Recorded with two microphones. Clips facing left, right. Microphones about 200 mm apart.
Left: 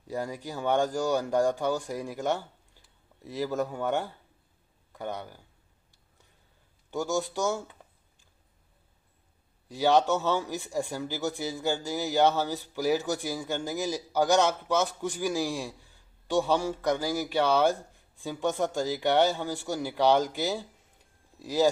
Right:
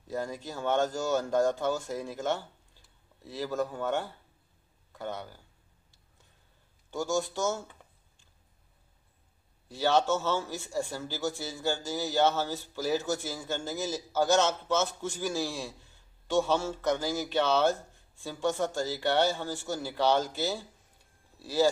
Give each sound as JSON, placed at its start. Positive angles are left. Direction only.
{"t": 0.1, "sound": "a man's voice", "side_deg": 15}
{"t": 6.9, "sound": "a man's voice", "side_deg": 15}
{"t": 9.7, "sound": "a man's voice", "side_deg": 15}